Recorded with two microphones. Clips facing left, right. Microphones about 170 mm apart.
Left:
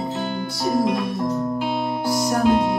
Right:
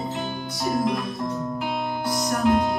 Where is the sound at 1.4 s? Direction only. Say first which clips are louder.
Left 4 dB; 25° left (ahead or behind).